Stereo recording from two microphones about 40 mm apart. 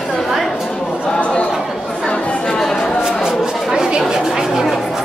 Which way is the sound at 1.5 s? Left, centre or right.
Centre.